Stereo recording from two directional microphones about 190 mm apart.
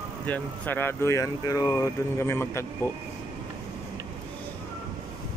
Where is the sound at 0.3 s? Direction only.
10° left (ahead or behind).